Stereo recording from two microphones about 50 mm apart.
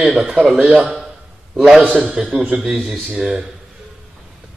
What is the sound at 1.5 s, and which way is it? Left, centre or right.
Speech, centre.